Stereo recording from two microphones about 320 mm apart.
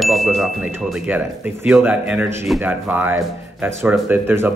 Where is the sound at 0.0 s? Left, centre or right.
Centre.